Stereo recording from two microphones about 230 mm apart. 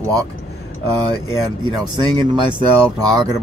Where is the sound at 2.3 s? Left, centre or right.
Centre.